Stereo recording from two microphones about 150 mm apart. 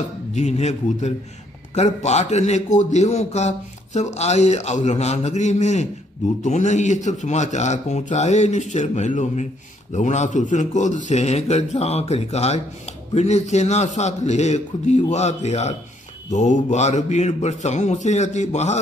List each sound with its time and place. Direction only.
0.3 s a man's voice: 50° left (ahead or behind)